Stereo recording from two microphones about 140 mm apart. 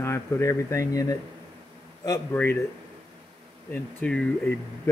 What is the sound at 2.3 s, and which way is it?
Speech, 15° left (ahead or behind).